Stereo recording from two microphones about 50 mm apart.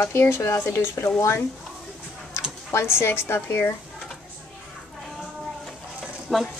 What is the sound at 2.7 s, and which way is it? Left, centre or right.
A woman's voice, left.